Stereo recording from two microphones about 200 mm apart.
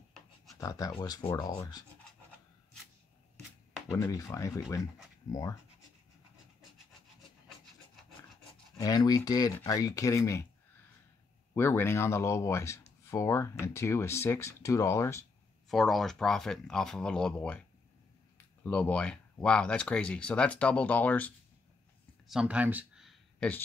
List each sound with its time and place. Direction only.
0.6 s speech: 15° left (ahead or behind)
3.9 s speech: 15° left (ahead or behind)
8.7 s speech: 20° left (ahead or behind)
11.5 s speech: 10° left (ahead or behind)
15.7 s speech: centre (ahead or behind)
22.3 s a sound: 5° right (ahead or behind)